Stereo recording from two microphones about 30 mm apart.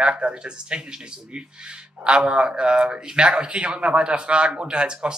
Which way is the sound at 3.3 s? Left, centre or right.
Right.